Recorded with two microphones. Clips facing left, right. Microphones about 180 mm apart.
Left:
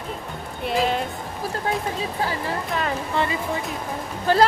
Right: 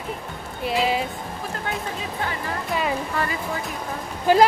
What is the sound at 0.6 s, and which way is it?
Speech, 5° right (ahead or behind).